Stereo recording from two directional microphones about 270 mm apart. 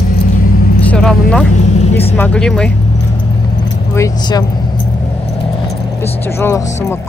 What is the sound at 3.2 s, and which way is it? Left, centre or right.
Keys jangling, centre.